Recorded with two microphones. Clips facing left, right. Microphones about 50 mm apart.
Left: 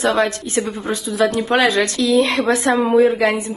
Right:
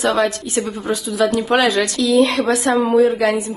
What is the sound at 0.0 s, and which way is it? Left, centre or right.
Speech, left.